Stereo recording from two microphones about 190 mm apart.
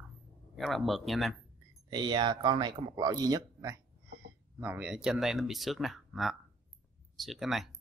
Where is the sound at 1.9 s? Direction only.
20° right (ahead or behind); by 7.7 s centre (ahead or behind).